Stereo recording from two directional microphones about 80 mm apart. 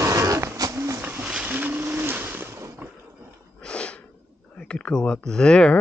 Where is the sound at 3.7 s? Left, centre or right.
Centre.